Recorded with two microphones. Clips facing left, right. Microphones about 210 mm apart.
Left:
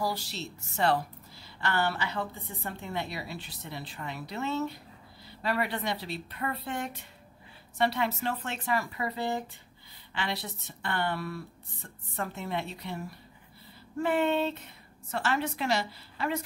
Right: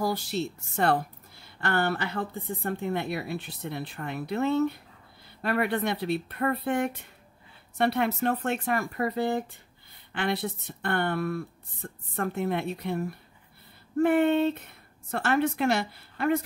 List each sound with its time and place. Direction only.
0.0 s speech: 55° right (ahead or behind)